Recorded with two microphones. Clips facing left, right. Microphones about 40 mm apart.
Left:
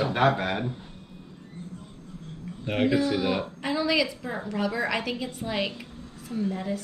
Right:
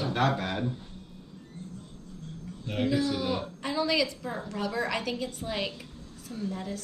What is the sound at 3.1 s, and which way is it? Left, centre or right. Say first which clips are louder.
Speech: left 4 dB; centre.